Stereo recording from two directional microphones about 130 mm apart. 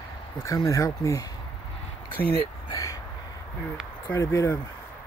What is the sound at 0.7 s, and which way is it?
Speech, 25° left (ahead or behind).